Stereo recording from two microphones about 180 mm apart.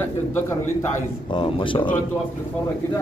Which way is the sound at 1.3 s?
25° left (ahead or behind).